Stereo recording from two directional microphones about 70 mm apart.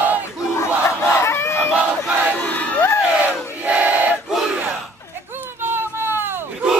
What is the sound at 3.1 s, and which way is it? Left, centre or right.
Battle cry, centre.